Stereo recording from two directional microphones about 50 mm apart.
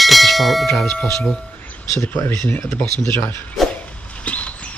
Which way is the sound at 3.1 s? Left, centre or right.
Left.